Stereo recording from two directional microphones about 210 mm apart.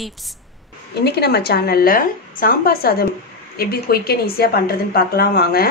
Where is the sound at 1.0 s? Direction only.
50° left (ahead or behind).